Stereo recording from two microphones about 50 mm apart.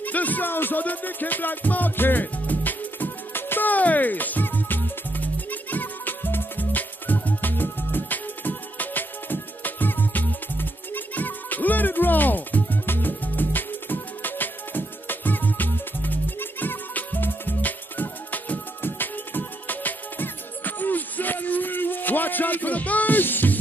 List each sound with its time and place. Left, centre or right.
0.0 s music: left